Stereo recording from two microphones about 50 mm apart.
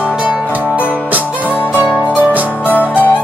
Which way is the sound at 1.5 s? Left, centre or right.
Left.